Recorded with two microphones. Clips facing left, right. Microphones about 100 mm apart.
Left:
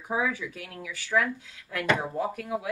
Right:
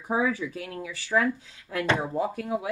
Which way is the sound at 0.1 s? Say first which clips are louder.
Right 3 dB; 35° right (ahead or behind).